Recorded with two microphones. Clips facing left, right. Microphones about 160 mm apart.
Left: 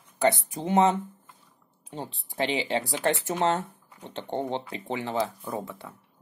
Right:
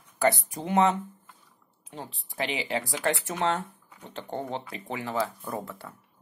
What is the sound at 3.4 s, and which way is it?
Speech, 40° left (ahead or behind).